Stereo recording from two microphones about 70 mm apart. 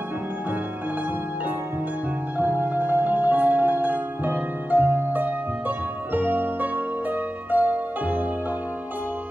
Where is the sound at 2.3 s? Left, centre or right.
Right.